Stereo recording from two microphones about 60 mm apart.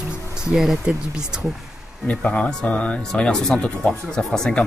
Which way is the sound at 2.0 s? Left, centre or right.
Left.